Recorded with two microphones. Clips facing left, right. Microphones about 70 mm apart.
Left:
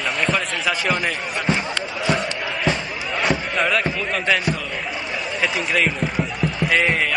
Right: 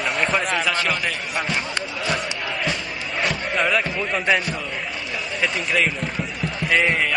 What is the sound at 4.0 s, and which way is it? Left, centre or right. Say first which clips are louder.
Speech: even; centre.